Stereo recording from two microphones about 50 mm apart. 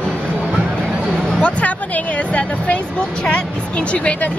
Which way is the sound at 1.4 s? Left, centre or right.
Left.